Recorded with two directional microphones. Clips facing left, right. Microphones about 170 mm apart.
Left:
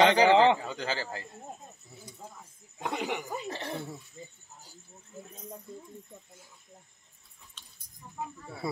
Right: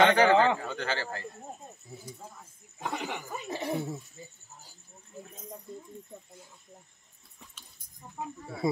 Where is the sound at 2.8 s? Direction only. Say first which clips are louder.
Left 2 dB; 15° left (ahead or behind).